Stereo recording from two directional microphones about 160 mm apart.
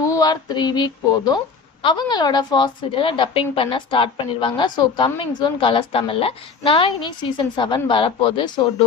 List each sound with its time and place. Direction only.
0.0 s a woman's voice: 20° left (ahead or behind)